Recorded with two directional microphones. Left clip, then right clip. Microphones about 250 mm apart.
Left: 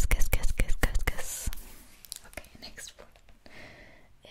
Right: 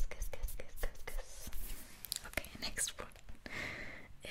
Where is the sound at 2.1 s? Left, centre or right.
Centre.